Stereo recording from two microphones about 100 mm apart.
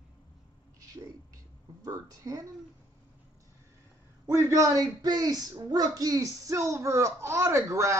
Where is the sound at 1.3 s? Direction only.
35° right (ahead or behind).